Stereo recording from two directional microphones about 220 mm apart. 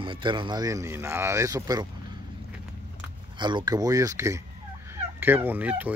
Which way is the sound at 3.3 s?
20° right (ahead or behind).